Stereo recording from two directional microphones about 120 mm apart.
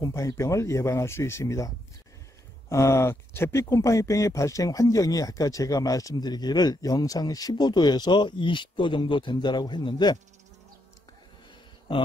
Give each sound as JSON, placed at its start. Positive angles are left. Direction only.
{"t": 0.0, "sound": "speech", "side_deg": 25}
{"t": 2.7, "sound": "speech", "side_deg": 25}